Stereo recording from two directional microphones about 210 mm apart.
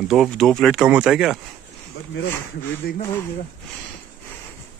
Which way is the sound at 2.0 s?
70° left (ahead or behind).